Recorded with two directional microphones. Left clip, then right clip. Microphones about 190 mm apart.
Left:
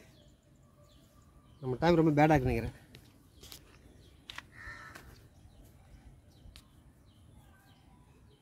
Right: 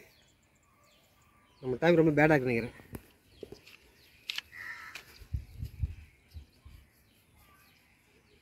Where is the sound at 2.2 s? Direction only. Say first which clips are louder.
Right 1 dB; 55° left (ahead or behind).